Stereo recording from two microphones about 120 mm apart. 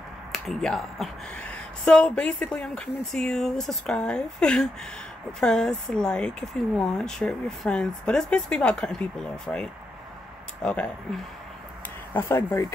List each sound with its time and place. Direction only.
0.3 s speech: centre (ahead or behind)
12.1 s speech: 20° left (ahead or behind)